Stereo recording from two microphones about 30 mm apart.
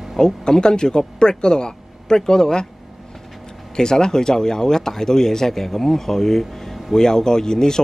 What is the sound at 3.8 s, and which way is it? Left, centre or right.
Speech, left.